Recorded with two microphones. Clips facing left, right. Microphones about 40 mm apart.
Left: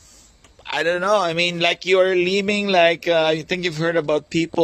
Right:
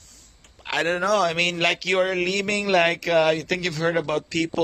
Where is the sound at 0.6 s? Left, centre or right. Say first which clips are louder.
Left 3 dB; centre.